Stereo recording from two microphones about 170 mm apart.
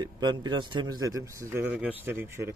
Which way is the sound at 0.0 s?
25° right (ahead or behind).